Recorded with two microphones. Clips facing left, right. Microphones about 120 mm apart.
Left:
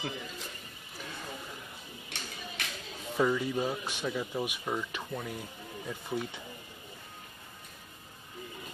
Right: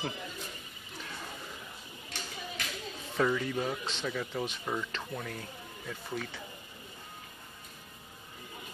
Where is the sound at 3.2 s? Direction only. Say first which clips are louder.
Left 1 dB; 10° left (ahead or behind).